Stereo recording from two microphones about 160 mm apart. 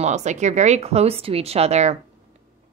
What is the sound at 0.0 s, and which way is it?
A woman's voice, 45° right (ahead or behind).